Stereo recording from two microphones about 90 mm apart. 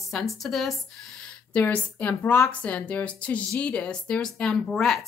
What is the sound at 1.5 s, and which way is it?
Speech, 15° left (ahead or behind).